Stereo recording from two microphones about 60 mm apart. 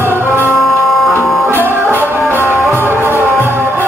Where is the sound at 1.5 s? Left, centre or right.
Right.